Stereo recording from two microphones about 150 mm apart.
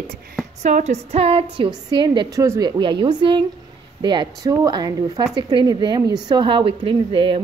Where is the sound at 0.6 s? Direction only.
50° right (ahead or behind).